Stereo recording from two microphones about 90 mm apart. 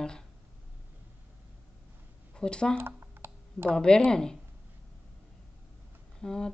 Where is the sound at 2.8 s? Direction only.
25° right (ahead or behind).